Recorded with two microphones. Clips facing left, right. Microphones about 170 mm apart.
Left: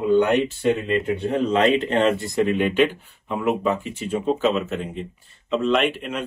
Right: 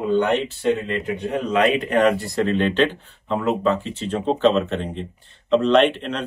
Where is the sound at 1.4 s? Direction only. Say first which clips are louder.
Even; 30° left (ahead or behind).